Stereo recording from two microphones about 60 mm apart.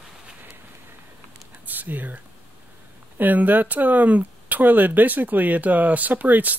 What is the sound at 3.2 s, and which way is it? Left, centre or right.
Speech, right.